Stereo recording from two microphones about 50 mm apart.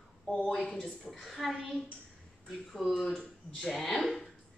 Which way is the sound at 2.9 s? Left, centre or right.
Centre.